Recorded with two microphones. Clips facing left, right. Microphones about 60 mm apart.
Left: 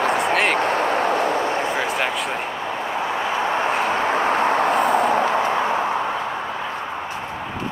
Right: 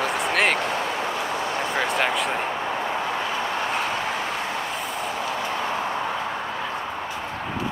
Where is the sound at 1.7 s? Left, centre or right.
Centre; by 3.7 s left.